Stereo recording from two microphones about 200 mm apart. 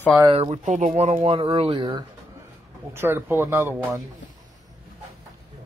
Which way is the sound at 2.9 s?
10° right (ahead or behind).